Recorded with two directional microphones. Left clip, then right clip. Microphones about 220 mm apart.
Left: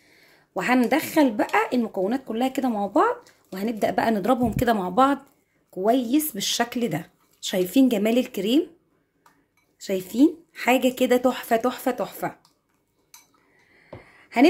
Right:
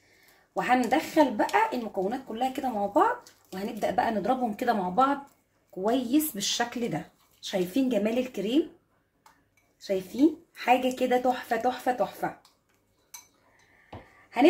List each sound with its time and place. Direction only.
0.8 s a woman's voice: 50° left (ahead or behind)
5.8 s a woman's voice: 30° left (ahead or behind); by 8.5 s 45° left (ahead or behind)
9.8 s a woman's voice: 45° left (ahead or behind)